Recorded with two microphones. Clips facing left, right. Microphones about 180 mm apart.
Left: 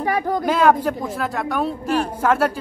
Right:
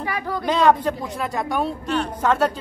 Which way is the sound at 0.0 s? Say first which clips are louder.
Left 6 dB; 45° left (ahead or behind).